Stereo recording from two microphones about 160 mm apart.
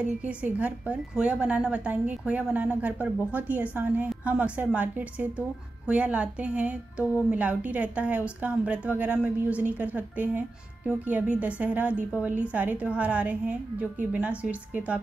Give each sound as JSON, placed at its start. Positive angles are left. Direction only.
{"t": 0.0, "sound": "speech", "side_deg": -10}